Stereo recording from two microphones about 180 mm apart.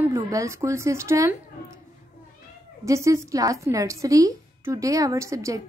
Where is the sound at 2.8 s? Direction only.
15° right (ahead or behind).